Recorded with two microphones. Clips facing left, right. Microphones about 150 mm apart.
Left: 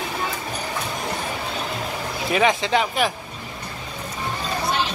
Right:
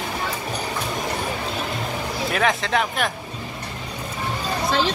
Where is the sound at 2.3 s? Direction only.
Centre (ahead or behind).